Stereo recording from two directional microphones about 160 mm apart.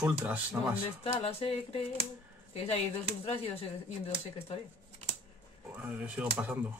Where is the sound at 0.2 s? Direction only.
10° right (ahead or behind).